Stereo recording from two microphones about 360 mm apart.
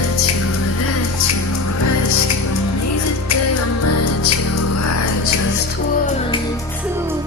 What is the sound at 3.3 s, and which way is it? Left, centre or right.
Music, left.